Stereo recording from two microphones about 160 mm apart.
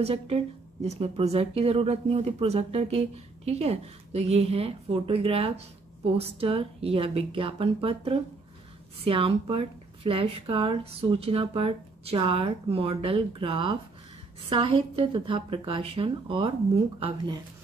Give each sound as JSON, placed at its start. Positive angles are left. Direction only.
{"t": 0.0, "sound": "speech", "side_deg": -35}